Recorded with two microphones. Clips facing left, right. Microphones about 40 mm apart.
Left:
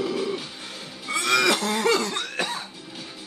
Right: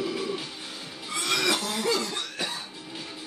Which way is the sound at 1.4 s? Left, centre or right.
Left.